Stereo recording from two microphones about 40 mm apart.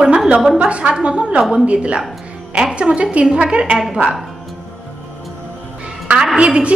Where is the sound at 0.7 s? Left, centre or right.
Right.